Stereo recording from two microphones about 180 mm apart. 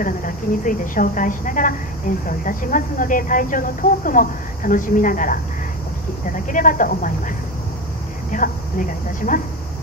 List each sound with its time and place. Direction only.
0.0 s a woman's voice: 50° left (ahead or behind)